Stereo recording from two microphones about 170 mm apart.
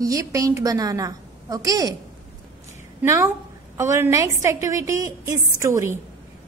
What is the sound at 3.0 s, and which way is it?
A woman's voice, 15° right (ahead or behind).